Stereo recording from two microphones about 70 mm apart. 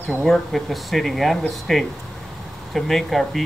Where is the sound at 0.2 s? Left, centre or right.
Centre.